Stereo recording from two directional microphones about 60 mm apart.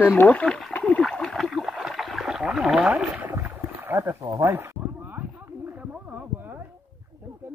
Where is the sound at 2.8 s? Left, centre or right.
Centre.